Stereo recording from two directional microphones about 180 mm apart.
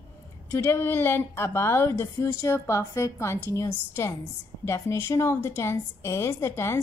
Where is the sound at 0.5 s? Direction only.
15° left (ahead or behind).